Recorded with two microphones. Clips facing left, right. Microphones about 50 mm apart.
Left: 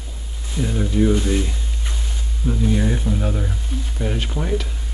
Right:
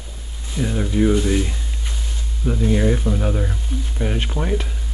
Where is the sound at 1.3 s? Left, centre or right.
Centre.